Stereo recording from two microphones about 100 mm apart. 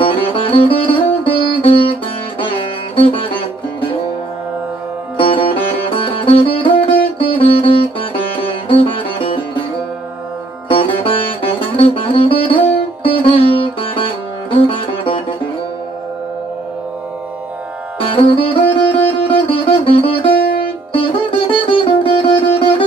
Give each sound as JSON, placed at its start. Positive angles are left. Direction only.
{"t": 0.0, "sound": "music", "side_deg": 60}
{"t": 3.0, "sound": "music", "side_deg": 60}
{"t": 5.1, "sound": "sitar", "side_deg": 65}
{"t": 8.6, "sound": "music", "side_deg": 65}
{"t": 10.7, "sound": "sitar", "side_deg": 60}
{"t": 15.0, "sound": "music", "side_deg": 60}
{"t": 18.1, "sound": "music", "side_deg": 65}
{"t": 20.9, "sound": "sitar", "side_deg": 60}